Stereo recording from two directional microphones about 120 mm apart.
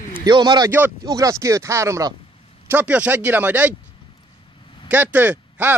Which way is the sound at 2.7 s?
15° right (ahead or behind).